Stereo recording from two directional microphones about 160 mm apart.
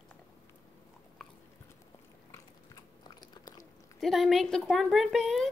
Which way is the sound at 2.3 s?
25° left (ahead or behind).